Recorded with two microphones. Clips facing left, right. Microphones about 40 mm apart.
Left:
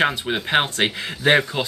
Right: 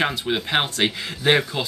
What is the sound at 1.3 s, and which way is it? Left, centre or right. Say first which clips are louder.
Speech: left 2 dB; centre.